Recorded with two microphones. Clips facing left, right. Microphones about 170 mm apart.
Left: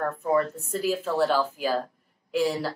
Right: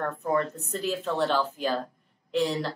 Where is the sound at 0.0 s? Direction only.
5° left (ahead or behind).